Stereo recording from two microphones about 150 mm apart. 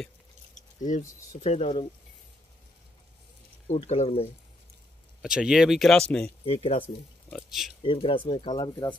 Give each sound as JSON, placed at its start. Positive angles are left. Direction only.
{"t": 0.6, "sound": "speech", "side_deg": 55}
{"t": 1.4, "sound": "speech", "side_deg": 40}
{"t": 3.6, "sound": "speech", "side_deg": 50}
{"t": 5.2, "sound": "speech", "side_deg": -5}
{"t": 6.4, "sound": "speech", "side_deg": 40}
{"t": 6.8, "sound": "speech", "side_deg": 10}
{"t": 7.4, "sound": "speech", "side_deg": 0}
{"t": 7.8, "sound": "speech", "side_deg": 35}